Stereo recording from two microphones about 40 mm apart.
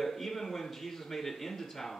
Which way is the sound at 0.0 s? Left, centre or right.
Centre.